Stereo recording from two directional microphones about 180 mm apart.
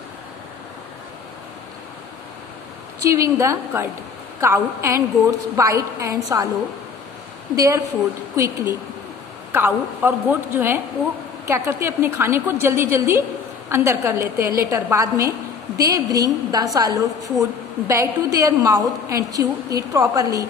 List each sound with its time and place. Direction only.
3.0 s a woman's voice: 15° right (ahead or behind)
7.5 s a woman's voice: 15° right (ahead or behind)